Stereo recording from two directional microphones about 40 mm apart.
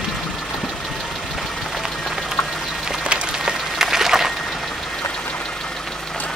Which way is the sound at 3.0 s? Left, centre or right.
Right.